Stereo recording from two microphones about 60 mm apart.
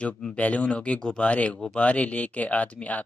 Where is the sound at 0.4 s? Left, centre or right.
Left.